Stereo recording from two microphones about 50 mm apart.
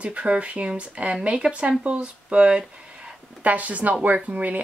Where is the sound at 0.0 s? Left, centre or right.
Right.